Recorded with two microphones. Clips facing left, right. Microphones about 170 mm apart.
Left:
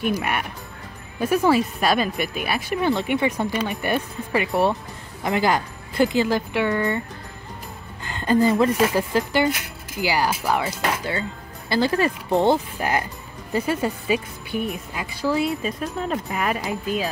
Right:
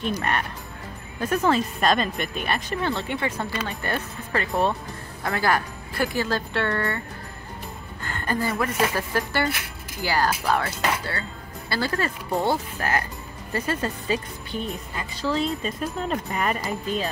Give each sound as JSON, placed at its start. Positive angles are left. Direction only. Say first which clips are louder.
{"t": 0.0, "sound": "speech", "louder": "left 2 dB", "side_deg": 10}
{"t": 8.0, "sound": "speech", "louder": "left 8 dB", "side_deg": 20}